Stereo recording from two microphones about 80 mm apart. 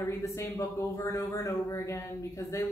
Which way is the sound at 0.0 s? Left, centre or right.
Left.